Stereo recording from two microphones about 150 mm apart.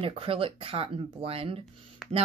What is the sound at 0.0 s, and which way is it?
Speech, 40° right (ahead or behind).